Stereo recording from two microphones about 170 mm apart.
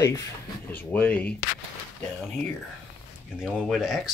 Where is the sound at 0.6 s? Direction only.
10° left (ahead or behind).